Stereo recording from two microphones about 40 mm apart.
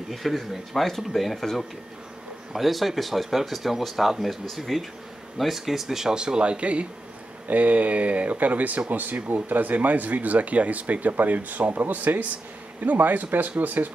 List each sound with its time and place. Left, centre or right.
0.1 s speech: centre
6.1 s speech: right
7.4 s speech: right